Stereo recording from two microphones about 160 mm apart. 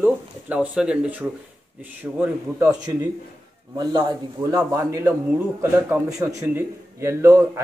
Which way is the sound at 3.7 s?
25° right (ahead or behind).